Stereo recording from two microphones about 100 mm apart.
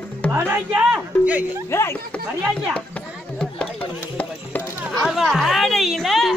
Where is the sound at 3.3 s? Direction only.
15° left (ahead or behind).